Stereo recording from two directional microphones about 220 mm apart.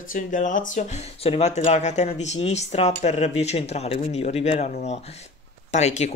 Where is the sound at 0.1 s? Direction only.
35° left (ahead or behind).